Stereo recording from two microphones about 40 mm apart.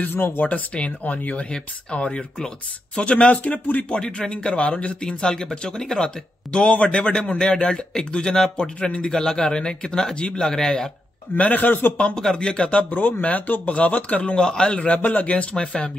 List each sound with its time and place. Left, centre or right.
0.0 s speech: left
0.4 s speech: left
1.5 s speech: left
4.3 s speech: left
5.0 s speech: centre
10.4 s a man's voice: centre
11.3 s a man's voice: left
12.0 s speech: centre
13.2 s speech: left
14.2 s speech: left
14.8 s speech: left
15.5 s speech: left